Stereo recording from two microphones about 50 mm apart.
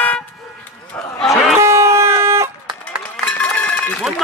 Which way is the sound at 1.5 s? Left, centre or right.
Right.